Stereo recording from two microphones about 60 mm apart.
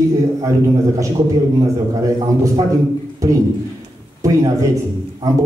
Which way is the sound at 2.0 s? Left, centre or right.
Right.